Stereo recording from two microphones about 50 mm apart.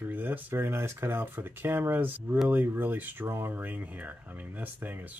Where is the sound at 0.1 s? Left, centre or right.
Right.